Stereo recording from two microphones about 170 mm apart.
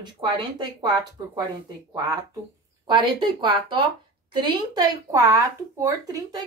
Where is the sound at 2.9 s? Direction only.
25° right (ahead or behind).